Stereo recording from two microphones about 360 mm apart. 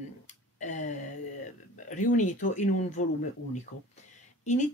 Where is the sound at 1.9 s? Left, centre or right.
Left.